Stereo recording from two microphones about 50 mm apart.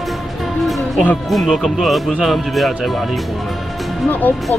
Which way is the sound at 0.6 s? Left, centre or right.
Centre.